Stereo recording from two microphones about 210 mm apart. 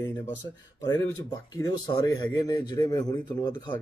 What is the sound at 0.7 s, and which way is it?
Speech, 15° left (ahead or behind).